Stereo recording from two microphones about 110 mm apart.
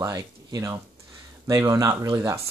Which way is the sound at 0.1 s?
30° right (ahead or behind).